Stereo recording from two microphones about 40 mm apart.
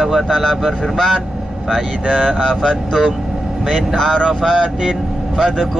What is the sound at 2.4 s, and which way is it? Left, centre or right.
Speech, centre.